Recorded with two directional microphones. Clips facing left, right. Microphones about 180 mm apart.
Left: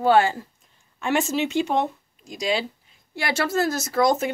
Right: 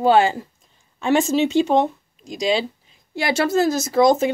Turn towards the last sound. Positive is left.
turn(degrees=-20)  # may be behind; listen again after turning